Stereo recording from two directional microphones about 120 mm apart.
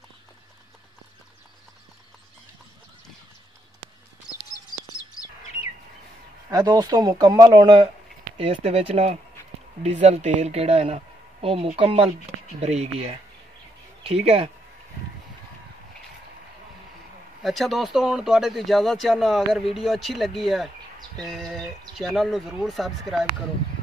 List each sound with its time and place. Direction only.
6.5 s a man's voice: 30° right (ahead or behind)
8.4 s speech: 55° right (ahead or behind)
9.8 s speech: 75° right (ahead or behind); by 14.5 s 55° right (ahead or behind)
17.4 s speech: centre (ahead or behind)